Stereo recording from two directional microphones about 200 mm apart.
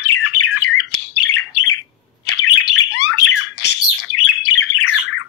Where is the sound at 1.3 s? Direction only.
90° left.